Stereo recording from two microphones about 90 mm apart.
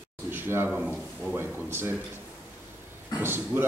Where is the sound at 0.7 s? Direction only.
15° right (ahead or behind).